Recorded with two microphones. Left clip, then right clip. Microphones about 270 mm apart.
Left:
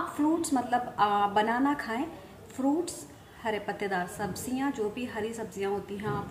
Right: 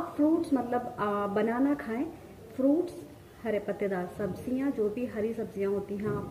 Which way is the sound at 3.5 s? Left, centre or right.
Centre.